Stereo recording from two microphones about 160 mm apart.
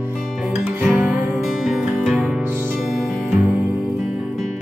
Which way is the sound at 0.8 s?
10° right (ahead or behind).